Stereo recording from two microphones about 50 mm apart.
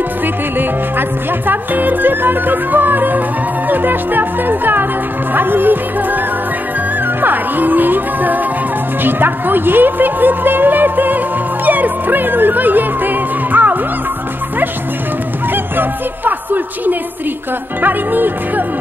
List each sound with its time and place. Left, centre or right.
1.5 s speech: right
7.2 s speech: right
11.6 s music: right
15.5 s speech: right